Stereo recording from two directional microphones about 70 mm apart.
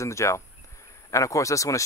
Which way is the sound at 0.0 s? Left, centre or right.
Left.